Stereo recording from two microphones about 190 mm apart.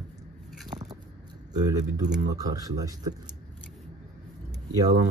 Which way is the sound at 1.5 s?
20° right (ahead or behind).